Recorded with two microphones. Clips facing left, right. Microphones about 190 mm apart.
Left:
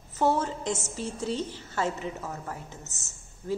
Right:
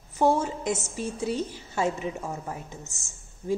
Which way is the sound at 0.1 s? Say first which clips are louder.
Right 2 dB; 10° right (ahead or behind).